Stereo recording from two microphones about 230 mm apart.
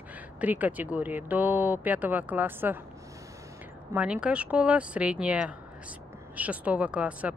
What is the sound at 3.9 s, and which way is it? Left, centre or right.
Speech, centre.